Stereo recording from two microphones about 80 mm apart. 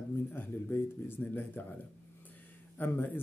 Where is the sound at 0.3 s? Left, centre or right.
Left.